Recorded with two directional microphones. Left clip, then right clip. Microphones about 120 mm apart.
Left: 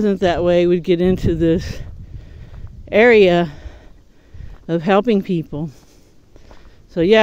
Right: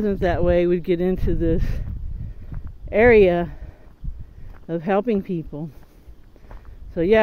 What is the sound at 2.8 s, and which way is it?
Speech, 60° left (ahead or behind).